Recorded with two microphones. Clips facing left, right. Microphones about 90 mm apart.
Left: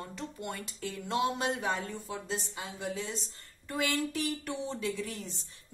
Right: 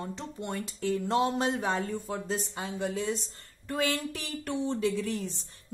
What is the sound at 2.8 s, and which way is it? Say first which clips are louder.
Speech: right 6 dB; 50° right (ahead or behind).